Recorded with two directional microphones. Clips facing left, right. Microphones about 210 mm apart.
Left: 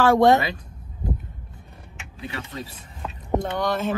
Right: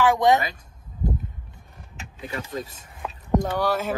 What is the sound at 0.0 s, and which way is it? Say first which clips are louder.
Speech: left 3 dB; 15° right (ahead or behind).